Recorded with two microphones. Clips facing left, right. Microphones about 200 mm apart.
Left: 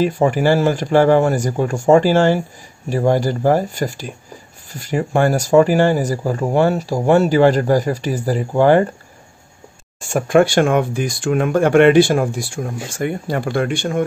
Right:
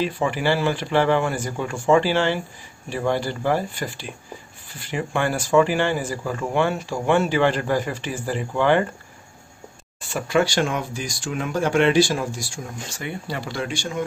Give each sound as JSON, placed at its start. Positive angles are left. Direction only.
{"t": 0.0, "sound": "speech", "side_deg": 45}
{"t": 9.9, "sound": "speech", "side_deg": 50}